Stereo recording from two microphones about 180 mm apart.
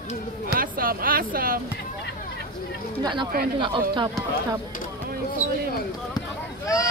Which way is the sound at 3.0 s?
25° right (ahead or behind).